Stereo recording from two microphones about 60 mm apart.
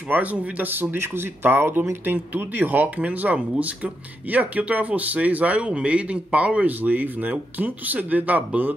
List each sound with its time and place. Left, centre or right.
0.1 s speech: right